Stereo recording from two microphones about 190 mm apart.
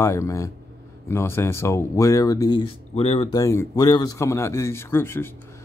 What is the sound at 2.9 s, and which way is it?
Speech, 30° left (ahead or behind).